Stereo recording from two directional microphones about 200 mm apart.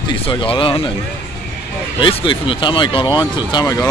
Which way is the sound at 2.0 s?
25° left (ahead or behind).